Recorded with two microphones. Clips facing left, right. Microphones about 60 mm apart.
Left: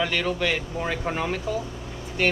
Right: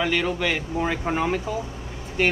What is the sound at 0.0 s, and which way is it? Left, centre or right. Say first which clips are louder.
Speech: right 1 dB; centre.